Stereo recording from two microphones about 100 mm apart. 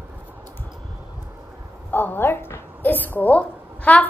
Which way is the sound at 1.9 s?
20° left (ahead or behind).